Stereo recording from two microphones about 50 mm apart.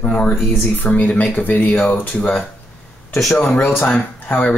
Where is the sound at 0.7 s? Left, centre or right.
Left.